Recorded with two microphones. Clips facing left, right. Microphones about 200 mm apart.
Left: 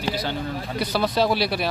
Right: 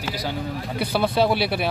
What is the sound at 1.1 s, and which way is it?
Speech, 60° right (ahead or behind).